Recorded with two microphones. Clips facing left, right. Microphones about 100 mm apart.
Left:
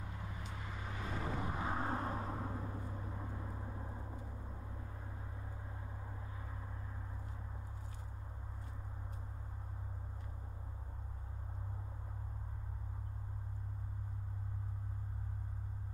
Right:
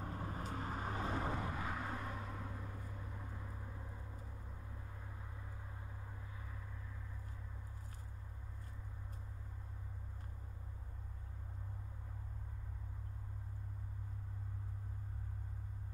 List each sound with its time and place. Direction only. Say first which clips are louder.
0.0 s vehicle: right 4 dB; 45° right (ahead or behind)
1.4 s vehicle: left 3 dB; 25° left (ahead or behind)